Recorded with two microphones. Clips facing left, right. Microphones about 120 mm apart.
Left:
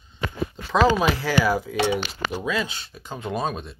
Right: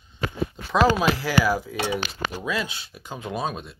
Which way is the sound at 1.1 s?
5° right (ahead or behind).